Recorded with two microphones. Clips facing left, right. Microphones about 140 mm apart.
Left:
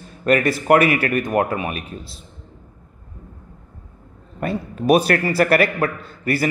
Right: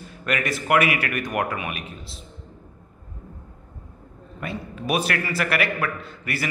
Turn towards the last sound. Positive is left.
turn(degrees=40)  # may be behind; listen again after turning